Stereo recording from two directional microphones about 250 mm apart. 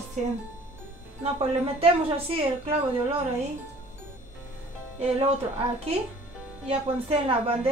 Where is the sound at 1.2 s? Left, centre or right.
Right.